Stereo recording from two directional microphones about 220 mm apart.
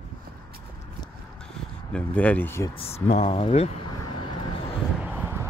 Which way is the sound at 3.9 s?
25° left (ahead or behind).